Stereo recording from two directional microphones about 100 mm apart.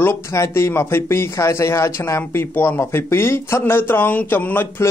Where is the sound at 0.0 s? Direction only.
25° left (ahead or behind).